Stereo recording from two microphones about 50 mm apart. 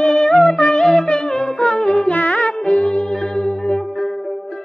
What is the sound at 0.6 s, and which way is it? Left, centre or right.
Music, centre.